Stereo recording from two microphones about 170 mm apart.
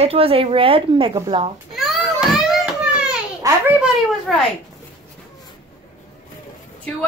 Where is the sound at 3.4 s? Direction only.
20° right (ahead or behind).